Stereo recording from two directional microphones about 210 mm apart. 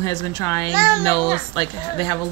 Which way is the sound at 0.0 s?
15° left (ahead or behind).